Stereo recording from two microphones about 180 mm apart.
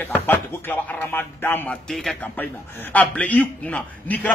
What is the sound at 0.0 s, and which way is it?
A man's voice, 10° left (ahead or behind).